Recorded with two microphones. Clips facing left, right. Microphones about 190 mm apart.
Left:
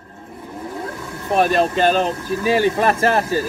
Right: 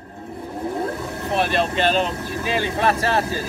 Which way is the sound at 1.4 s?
45° left (ahead or behind).